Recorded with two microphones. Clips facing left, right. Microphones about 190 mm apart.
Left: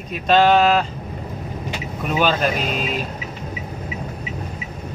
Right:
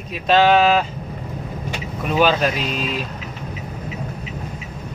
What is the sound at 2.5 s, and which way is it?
Speech, 45° left (ahead or behind).